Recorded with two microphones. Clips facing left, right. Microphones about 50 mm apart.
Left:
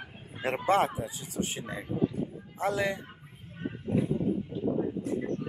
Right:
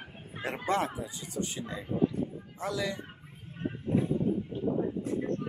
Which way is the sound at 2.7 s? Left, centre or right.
Left.